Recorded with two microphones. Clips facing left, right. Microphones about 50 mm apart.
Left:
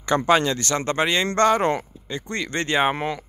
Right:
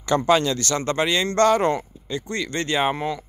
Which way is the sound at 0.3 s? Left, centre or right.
Left.